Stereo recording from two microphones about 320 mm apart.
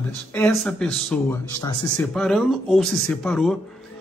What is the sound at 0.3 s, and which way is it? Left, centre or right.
Speech, centre.